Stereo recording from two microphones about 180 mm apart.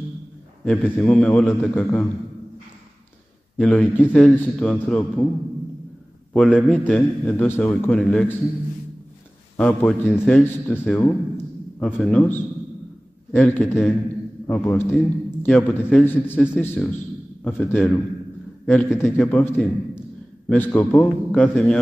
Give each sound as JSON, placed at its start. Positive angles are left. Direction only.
{"t": 0.7, "sound": "a man's voice", "side_deg": 5}
{"t": 3.5, "sound": "a man's voice", "side_deg": 5}
{"t": 6.3, "sound": "a man's voice", "side_deg": 5}
{"t": 9.6, "sound": "a man's voice", "side_deg": 10}
{"t": 11.3, "sound": "a sound", "side_deg": 5}
{"t": 13.3, "sound": "a man's voice", "side_deg": 5}